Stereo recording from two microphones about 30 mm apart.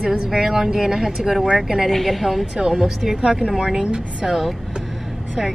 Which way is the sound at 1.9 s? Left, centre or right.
Centre.